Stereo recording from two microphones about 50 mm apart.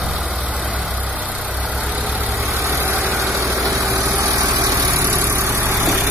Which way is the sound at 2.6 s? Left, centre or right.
Right.